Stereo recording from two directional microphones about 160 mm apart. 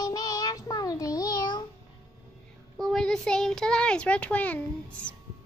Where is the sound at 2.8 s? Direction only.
5° left (ahead or behind).